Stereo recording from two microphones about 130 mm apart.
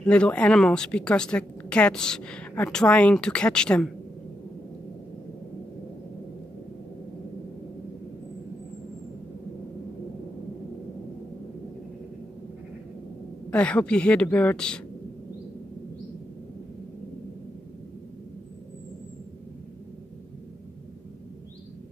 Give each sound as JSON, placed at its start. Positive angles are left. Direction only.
{"t": 0.0, "sound": "speech", "side_deg": 10}
{"t": 13.5, "sound": "speech", "side_deg": 10}